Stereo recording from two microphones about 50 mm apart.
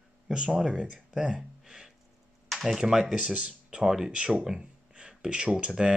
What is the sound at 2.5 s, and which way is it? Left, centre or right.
Speech, centre.